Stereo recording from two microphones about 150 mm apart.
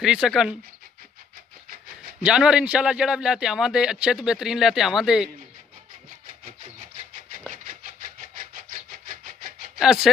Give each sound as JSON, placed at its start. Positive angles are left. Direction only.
{"t": 0.0, "sound": "a man's voice", "side_deg": -5}
{"t": 2.2, "sound": "a man's voice", "side_deg": -5}
{"t": 8.2, "sound": "a sound", "side_deg": -60}
{"t": 9.8, "sound": "speech", "side_deg": -5}